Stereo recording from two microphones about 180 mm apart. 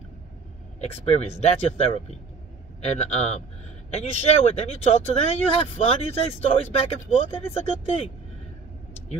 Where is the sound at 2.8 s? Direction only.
40° left (ahead or behind).